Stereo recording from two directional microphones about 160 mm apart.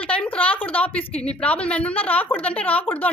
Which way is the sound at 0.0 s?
10° left (ahead or behind).